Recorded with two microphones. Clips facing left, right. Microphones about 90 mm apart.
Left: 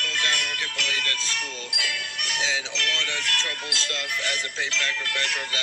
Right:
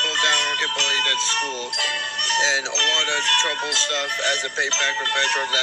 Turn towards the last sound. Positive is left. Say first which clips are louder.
# right 7 dB
turn(degrees=-40)  # may be behind; listen again after turning